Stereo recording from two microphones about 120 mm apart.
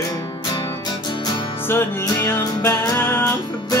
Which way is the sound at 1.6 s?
20° left (ahead or behind).